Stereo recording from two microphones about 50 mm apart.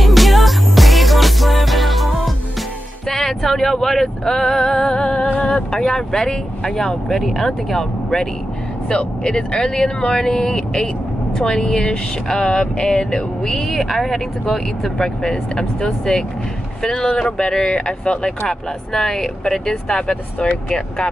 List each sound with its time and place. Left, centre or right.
0.0 s music: centre
3.1 s male singing: centre
5.3 s a sound: left
5.7 s speech: centre
12.4 s a sound: centre
13.5 s speech: centre